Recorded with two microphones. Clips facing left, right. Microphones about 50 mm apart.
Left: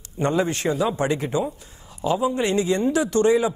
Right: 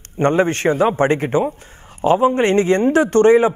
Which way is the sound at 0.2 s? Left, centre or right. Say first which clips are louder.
Right 6 dB; right.